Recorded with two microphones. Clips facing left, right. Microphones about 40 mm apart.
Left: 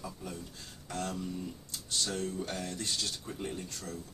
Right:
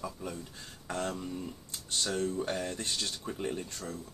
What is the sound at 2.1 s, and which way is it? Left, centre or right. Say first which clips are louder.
Speech: right 6 dB; centre.